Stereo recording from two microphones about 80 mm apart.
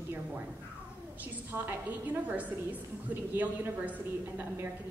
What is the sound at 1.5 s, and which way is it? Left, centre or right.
A woman's voice, right.